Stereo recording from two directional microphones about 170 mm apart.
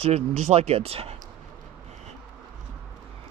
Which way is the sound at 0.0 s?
40° right (ahead or behind).